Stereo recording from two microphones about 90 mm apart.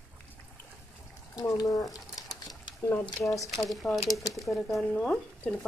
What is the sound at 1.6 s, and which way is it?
Speech, 45° left (ahead or behind).